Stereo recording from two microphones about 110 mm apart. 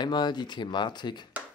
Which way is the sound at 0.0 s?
40° left (ahead or behind).